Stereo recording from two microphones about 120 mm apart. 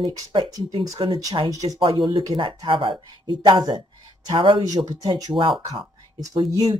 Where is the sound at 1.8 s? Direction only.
40° right (ahead or behind).